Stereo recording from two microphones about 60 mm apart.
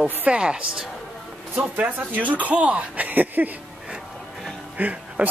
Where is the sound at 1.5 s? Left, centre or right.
Right.